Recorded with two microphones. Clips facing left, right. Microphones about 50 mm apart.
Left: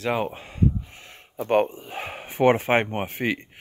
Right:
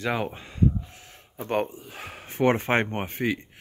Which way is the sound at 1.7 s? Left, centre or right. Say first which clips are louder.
Left 6 dB; left.